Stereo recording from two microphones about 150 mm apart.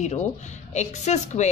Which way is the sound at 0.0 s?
50° left (ahead or behind).